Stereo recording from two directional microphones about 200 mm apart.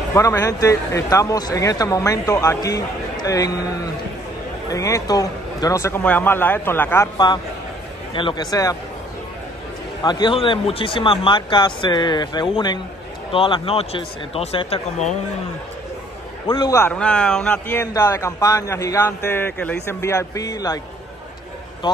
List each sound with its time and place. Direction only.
0.1 s a man's voice: 15° left (ahead or behind)
10.0 s speech: 20° left (ahead or behind)
16.4 s a man's voice: 20° left (ahead or behind)